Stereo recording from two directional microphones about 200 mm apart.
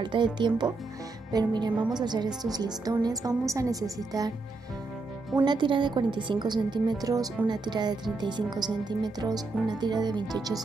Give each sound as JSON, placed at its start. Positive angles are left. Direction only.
{"t": 0.0, "sound": "a woman's voice", "side_deg": -25}
{"t": 5.3, "sound": "a woman's voice", "side_deg": -20}